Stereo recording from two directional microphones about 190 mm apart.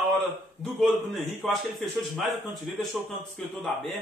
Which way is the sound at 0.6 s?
Centre (ahead or behind).